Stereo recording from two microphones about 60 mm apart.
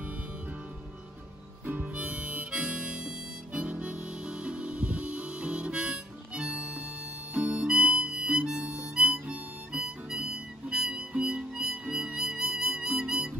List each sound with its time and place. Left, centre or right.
1.7 s harmonica: right
10.7 s music: centre